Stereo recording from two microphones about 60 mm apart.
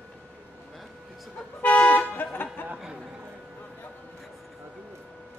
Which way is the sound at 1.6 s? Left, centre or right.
Left.